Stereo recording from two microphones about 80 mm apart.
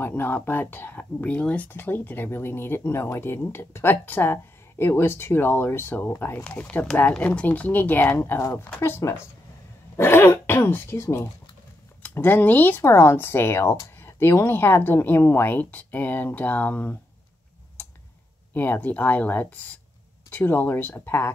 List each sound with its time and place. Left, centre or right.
0.0 s speech: left
1.7 s speech: left
6.4 s speech: centre; by 11.2 s left
12.1 s speech: left
18.5 s speech: left